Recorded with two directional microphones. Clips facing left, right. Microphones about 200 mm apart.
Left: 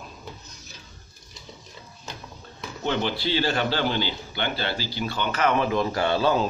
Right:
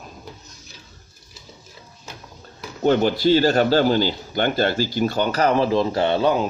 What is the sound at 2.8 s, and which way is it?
Speech, 45° right (ahead or behind).